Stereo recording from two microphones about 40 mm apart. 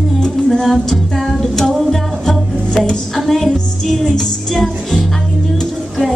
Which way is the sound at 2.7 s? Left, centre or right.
Centre.